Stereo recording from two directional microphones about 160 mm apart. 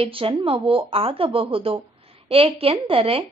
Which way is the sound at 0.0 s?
35° right (ahead or behind).